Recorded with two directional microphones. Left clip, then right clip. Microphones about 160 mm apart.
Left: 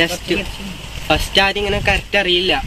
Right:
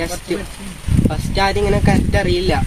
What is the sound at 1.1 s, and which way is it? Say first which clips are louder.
Speech: left 5 dB; centre (ahead or behind).